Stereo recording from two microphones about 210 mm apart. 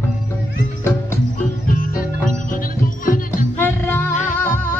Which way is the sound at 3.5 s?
10° left (ahead or behind).